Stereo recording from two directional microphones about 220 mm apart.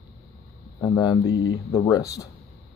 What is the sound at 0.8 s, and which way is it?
A man's voice, 15° left (ahead or behind).